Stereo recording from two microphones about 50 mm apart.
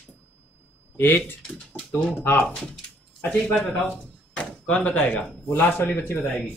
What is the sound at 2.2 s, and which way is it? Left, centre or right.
Speech, left.